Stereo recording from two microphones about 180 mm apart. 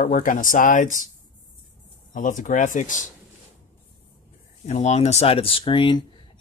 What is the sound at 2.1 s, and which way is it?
Speech, 45° left (ahead or behind).